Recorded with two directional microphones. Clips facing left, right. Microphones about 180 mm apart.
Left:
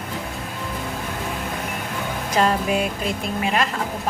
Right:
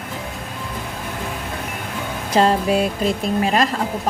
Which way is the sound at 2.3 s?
30° right (ahead or behind).